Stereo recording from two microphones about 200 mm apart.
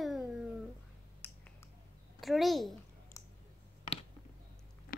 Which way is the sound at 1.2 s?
10° left (ahead or behind).